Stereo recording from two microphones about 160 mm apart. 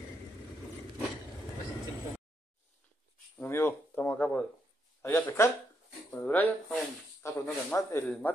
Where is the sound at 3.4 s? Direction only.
15° left (ahead or behind).